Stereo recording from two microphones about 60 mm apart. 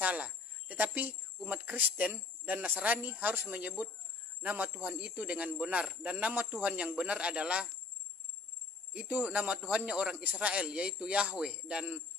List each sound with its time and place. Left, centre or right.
0.0 s speech: right
9.0 s speech: right